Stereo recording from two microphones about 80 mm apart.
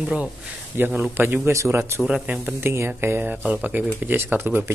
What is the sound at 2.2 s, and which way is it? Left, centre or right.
Speech, centre.